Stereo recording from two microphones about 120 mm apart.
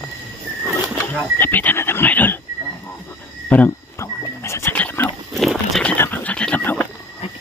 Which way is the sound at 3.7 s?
25° left (ahead or behind).